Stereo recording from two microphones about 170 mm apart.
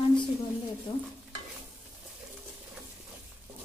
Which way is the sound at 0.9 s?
25° left (ahead or behind).